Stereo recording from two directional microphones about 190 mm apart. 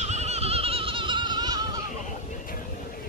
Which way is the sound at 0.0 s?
35° right (ahead or behind).